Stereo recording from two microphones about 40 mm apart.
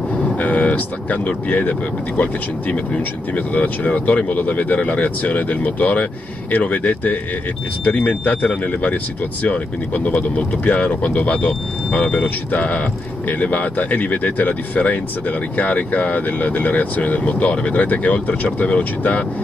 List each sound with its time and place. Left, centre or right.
0.4 s speech: left
3.3 s speech: left
9.5 s speech: left